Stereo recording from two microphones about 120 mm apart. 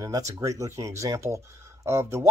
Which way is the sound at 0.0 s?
30° right (ahead or behind).